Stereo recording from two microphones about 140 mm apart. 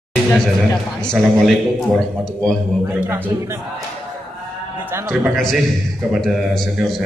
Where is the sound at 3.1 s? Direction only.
15° right (ahead or behind).